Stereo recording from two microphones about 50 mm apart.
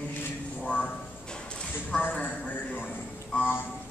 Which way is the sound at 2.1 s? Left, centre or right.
Left.